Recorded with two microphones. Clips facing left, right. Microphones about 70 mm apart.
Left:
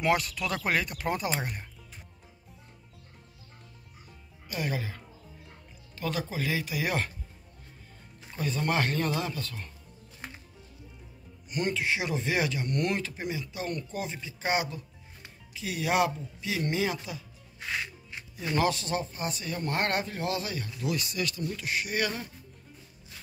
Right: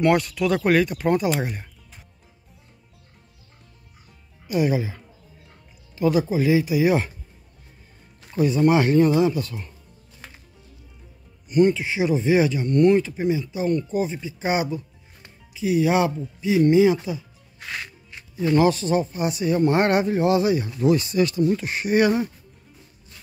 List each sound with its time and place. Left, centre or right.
0.0 s speech: centre
4.5 s speech: centre
8.3 s speech: centre
11.4 s speech: centre
17.6 s music: centre
18.6 s speech: centre; by 22.3 s right